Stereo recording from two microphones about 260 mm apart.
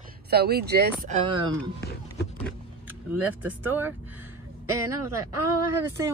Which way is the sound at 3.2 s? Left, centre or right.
Centre.